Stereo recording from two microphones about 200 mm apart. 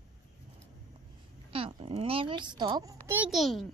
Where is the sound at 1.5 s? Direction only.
25° right (ahead or behind); by 3.6 s centre (ahead or behind).